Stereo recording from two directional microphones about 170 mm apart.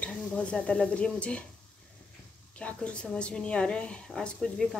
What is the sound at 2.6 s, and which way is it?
A woman's voice, 5° left (ahead or behind).